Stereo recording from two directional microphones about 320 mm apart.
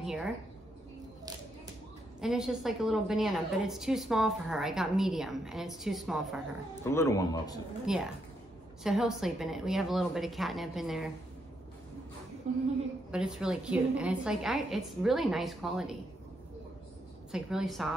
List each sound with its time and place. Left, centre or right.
0.0 s speech: centre
2.1 s a woman's voice: centre
7.8 s a woman's voice: centre
12.5 s a woman's voice: right
13.1 s a woman's voice: centre
17.3 s a woman's voice: centre